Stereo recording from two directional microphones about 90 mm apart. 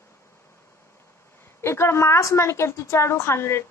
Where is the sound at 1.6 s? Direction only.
30° left (ahead or behind).